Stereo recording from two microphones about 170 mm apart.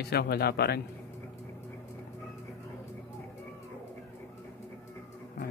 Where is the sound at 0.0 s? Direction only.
70° left (ahead or behind).